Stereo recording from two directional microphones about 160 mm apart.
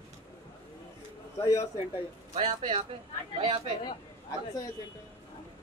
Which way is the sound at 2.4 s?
30° right (ahead or behind).